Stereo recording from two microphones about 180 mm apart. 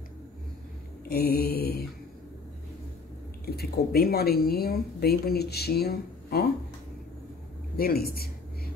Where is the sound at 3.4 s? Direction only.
60° left (ahead or behind).